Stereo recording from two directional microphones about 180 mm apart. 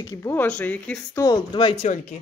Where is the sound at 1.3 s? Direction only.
25° left (ahead or behind).